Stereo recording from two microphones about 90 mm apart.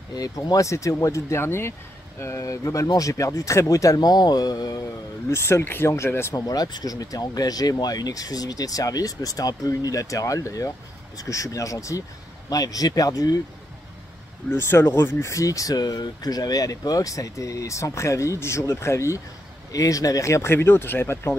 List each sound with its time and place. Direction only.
0.1 s speech: 45° left (ahead or behind)
5.3 s speech: 30° left (ahead or behind)
6.3 s speech: 45° left (ahead or behind)
14.5 s speech: 25° left (ahead or behind)